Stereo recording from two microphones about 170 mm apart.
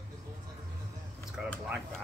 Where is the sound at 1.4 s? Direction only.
5° right (ahead or behind).